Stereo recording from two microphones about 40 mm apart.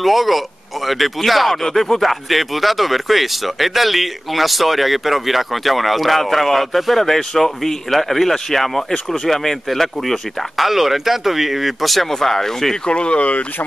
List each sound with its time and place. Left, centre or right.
0.0 s speech: centre
12.8 s speech: left